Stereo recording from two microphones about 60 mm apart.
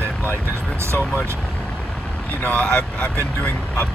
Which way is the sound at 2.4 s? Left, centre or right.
Left.